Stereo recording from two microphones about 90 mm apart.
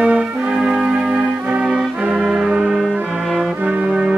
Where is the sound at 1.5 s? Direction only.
10° right (ahead or behind).